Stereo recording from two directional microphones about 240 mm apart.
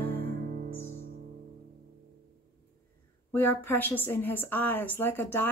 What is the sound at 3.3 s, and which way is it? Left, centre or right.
A woman's voice, centre.